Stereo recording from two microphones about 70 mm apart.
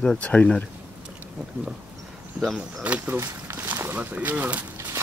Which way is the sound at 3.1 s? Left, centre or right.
Right.